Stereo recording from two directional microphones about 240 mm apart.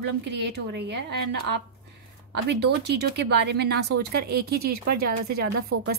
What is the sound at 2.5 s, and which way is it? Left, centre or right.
A woman's voice, right.